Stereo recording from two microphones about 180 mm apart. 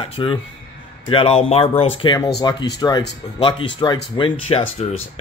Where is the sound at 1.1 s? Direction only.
30° left (ahead or behind).